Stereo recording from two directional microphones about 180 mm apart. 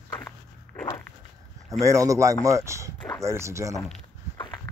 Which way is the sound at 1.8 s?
15° right (ahead or behind).